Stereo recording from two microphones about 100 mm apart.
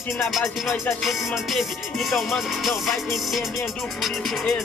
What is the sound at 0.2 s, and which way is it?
Music, centre (ahead or behind).